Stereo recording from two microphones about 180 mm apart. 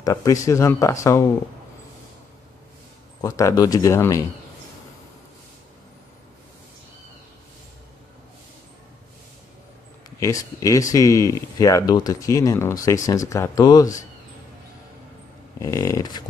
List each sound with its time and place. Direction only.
0.0 s speech: 20° left (ahead or behind)
3.2 s speech: 20° left (ahead or behind)
10.2 s speech: 20° left (ahead or behind)
15.6 s speech: 15° left (ahead or behind)